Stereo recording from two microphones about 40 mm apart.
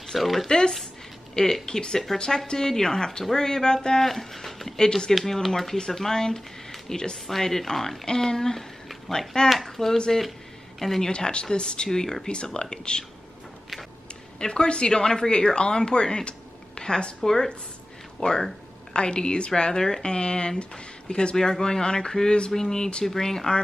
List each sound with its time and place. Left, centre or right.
0.0 s speech: centre
0.5 s speech: centre
4.0 s speech: centre
4.7 s speech: centre
5.1 s speech: centre
11.1 s speech: left
14.4 s speech: left